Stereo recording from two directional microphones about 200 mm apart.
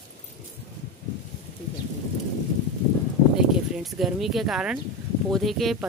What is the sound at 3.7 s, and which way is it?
Speech, centre (ahead or behind).